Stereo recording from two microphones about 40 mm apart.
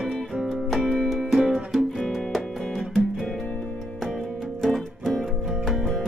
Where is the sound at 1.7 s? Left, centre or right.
Centre.